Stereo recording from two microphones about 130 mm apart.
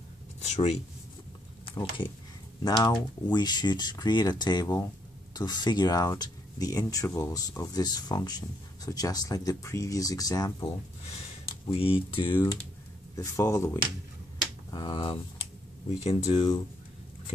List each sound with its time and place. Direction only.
0.4 s speech: 55° left (ahead or behind)
1.7 s speech: 40° left (ahead or behind)
11.7 s speech: 45° left (ahead or behind)
13.1 s speech: 25° left (ahead or behind)
14.7 s speech: 35° left (ahead or behind)
16.0 s speech: 50° left (ahead or behind)